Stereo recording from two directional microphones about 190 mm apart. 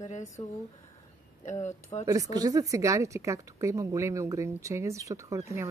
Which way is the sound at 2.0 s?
20° right (ahead or behind).